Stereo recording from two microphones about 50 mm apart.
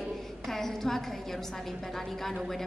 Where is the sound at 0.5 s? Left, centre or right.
Centre.